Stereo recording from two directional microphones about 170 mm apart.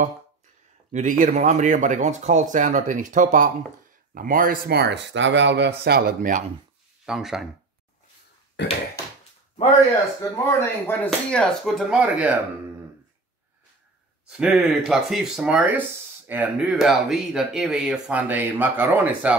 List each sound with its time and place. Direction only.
0.9 s speech: 50° right (ahead or behind)
7.1 s speech: centre (ahead or behind)
10.3 s speech: 15° left (ahead or behind)
11.1 s speech: centre (ahead or behind)
14.3 s speech: 5° right (ahead or behind)